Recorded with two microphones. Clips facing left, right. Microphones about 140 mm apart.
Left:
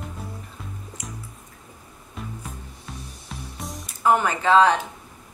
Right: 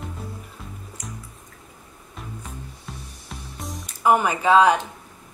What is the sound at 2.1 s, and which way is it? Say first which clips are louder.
Music: left 1 dB; centre (ahead or behind).